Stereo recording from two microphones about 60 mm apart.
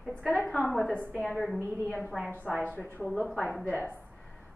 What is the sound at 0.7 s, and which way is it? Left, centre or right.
A woman's voice, centre.